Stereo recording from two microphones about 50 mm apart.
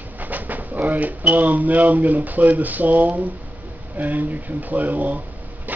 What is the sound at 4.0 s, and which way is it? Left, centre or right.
Speech, right.